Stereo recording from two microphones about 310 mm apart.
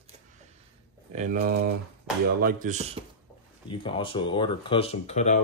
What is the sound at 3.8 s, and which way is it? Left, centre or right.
Speech, centre.